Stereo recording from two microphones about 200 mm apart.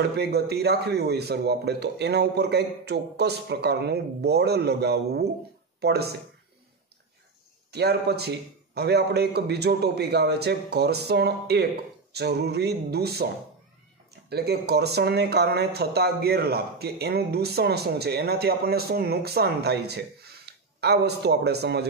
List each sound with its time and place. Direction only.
0.0 s a man's voice: 55° right (ahead or behind)
7.7 s a man's voice: 55° right (ahead or behind)
14.3 s speech: 55° right (ahead or behind)